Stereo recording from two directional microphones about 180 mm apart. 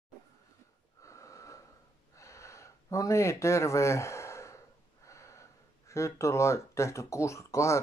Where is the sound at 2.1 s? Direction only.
15° left (ahead or behind).